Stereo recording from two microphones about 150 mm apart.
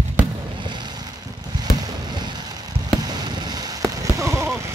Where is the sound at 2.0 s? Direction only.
25° right (ahead or behind).